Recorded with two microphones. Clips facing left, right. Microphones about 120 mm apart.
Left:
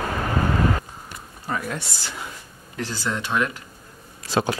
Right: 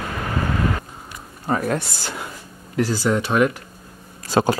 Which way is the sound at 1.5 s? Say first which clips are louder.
Right 7 dB; 45° right (ahead or behind).